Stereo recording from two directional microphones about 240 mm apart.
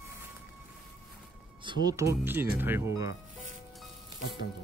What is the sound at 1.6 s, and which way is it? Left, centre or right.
Speech, centre.